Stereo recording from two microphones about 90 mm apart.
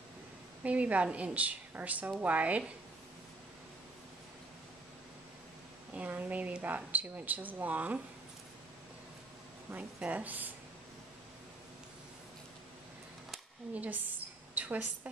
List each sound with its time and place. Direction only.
0.7 s a woman's voice: 15° right (ahead or behind)
5.9 s a woman's voice: 15° right (ahead or behind)
9.7 s a woman's voice: 15° right (ahead or behind)
13.7 s a woman's voice: 20° right (ahead or behind)
14.5 s a sound: 15° right (ahead or behind)